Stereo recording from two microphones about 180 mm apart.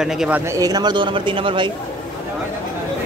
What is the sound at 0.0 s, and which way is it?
Speech, 5° right (ahead or behind).